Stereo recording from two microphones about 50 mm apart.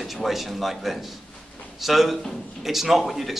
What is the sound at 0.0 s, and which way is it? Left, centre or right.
A man's voice, centre.